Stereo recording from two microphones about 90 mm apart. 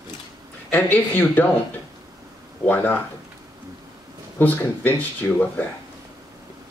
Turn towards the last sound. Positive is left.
turn(degrees=20)  # may be behind; listen again after turning